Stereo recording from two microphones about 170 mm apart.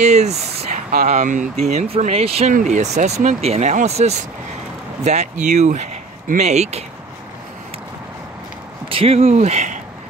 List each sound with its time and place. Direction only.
0.0 s speech: 40° right (ahead or behind)
8.8 s speech: 35° right (ahead or behind)